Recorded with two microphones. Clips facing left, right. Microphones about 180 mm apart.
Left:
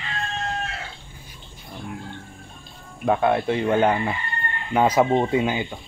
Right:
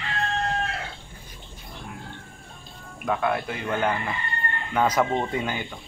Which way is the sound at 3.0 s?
30° left (ahead or behind).